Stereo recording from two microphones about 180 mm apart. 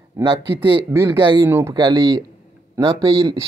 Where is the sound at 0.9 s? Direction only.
15° right (ahead or behind).